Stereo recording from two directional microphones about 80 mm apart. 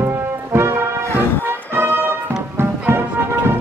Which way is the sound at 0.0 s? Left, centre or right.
Right.